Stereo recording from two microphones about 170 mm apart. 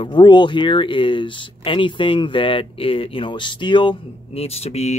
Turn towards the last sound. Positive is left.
turn(degrees=40)  # may be behind; listen again after turning